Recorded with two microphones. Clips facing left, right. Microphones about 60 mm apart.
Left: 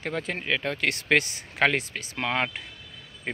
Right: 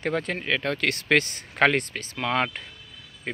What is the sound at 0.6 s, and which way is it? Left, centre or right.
Speech, centre.